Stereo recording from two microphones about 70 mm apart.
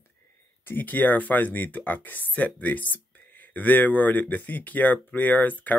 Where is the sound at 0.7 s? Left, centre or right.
Left.